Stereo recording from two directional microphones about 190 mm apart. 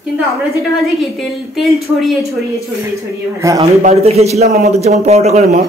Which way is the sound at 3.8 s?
35° right (ahead or behind).